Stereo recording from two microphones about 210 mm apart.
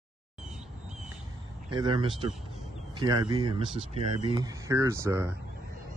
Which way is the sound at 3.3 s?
20° right (ahead or behind).